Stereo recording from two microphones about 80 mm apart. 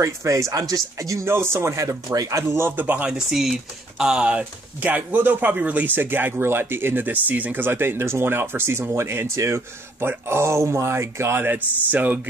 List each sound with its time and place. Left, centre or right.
0.0 s speech: right
2.8 s speech: centre
3.3 s speech: centre; by 12.2 s right